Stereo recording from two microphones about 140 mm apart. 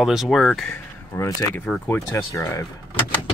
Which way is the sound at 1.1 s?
15° left (ahead or behind).